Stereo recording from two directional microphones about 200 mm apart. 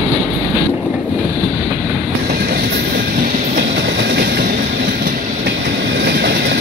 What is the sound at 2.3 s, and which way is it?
Train, 50° right (ahead or behind).